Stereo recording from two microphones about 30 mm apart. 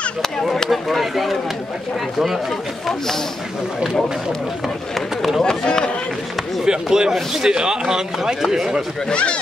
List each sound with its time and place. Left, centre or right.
0.7 s speech: centre
5.4 s speech: left
6.6 s speech: right
9.1 s speech: left